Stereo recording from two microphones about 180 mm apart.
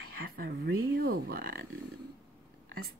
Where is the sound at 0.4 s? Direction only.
65° right (ahead or behind).